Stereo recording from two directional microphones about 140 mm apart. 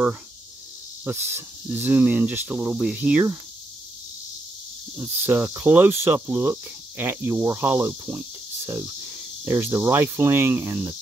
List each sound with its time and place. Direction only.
1.0 s cricket: 15° right (ahead or behind)
4.9 s cricket: 15° right (ahead or behind)
9.5 s cricket: 20° right (ahead or behind)